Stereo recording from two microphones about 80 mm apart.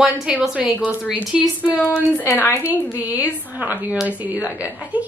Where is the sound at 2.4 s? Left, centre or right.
Left.